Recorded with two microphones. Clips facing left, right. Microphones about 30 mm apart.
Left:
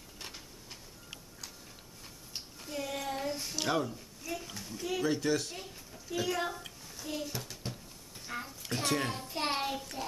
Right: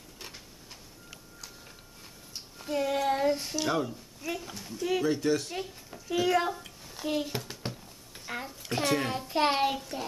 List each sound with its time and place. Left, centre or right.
0.2 s a sound: centre
2.6 s speech: right
3.2 s child singing: right
3.5 s speech: centre
3.8 s a woman's voice: centre
5.5 s speech: right
6.2 s a sound: right
7.0 s a child's voice: right
8.7 s speech: centre
9.3 s a sound: right
9.8 s speech: centre